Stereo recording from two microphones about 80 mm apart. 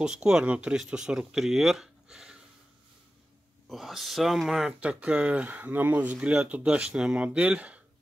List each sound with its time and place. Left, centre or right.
0.0 s speech: centre
3.6 s speech: centre
4.7 s speech: centre